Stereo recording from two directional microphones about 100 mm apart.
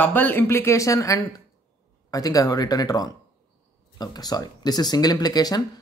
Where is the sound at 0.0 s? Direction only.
20° left (ahead or behind).